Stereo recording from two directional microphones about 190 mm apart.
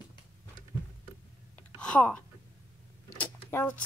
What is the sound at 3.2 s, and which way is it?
Mechanisms, 10° left (ahead or behind).